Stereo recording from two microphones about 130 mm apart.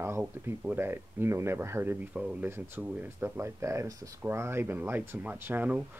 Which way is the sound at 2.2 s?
5° right (ahead or behind).